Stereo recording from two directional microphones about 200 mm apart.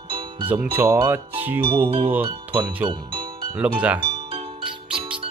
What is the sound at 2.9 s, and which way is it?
Music, 20° right (ahead or behind).